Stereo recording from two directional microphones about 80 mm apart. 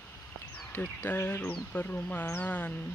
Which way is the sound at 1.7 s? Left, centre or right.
Centre.